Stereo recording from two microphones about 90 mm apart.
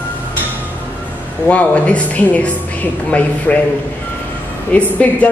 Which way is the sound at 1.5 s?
15° left (ahead or behind).